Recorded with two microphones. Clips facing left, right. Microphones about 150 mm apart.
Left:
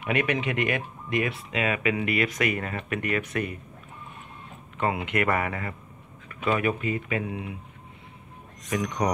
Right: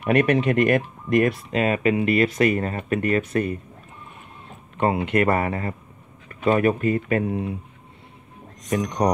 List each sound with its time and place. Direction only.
0.0 s speech: 40° right (ahead or behind)
4.7 s speech: 35° right (ahead or behind)
8.6 s speech: 35° right (ahead or behind)